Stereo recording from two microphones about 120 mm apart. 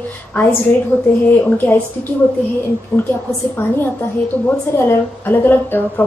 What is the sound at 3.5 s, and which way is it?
A woman's voice, 15° left (ahead or behind).